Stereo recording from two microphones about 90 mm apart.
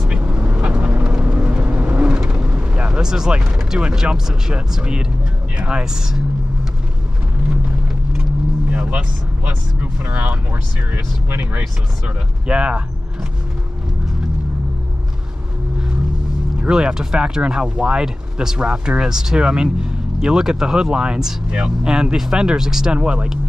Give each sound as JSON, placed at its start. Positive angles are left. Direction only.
{"t": 0.0, "sound": "vehicle", "side_deg": -15}
{"t": 2.2, "sound": "eruption", "side_deg": -15}
{"t": 3.5, "sound": "speech", "side_deg": -5}
{"t": 5.6, "sound": "vehicle", "side_deg": -10}
{"t": 8.7, "sound": "speech", "side_deg": -15}
{"t": 12.4, "sound": "speech", "side_deg": -10}
{"t": 16.6, "sound": "speech", "side_deg": -10}